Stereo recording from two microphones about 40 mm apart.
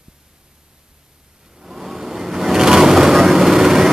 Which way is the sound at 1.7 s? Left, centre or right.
Centre.